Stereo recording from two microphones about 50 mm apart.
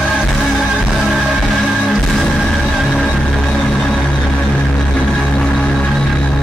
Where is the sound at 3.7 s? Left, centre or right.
Centre.